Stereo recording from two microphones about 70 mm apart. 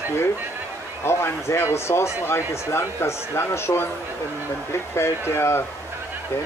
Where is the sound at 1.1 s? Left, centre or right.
Left.